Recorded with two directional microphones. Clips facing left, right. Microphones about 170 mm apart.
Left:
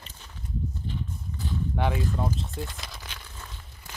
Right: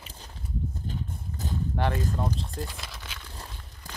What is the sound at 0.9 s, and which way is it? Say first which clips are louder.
Horse: left 1 dB; 50° right (ahead or behind).